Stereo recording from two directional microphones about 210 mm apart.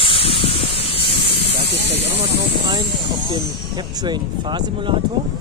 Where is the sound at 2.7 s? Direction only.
20° right (ahead or behind).